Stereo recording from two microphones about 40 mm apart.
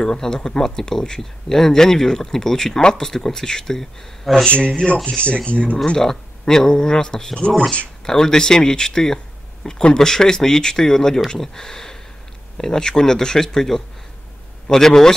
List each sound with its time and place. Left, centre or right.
0.0 s speech: centre
4.5 s speech: left
5.9 s speech: centre